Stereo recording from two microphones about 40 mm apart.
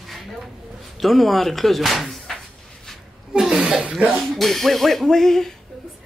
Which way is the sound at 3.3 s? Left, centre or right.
Centre.